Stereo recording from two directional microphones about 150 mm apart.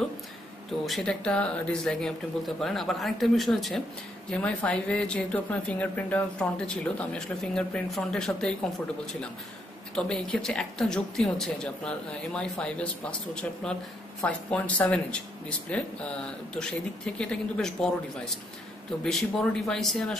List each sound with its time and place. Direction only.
0.8 s speech: 5° left (ahead or behind)
9.9 s speech: 5° left (ahead or behind)